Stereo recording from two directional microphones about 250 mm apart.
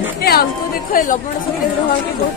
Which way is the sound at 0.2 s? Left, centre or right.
Left.